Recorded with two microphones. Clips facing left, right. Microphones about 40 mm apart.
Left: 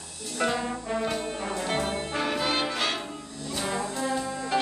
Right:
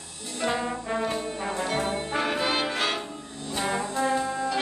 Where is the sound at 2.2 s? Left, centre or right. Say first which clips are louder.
Right 1 dB; centre.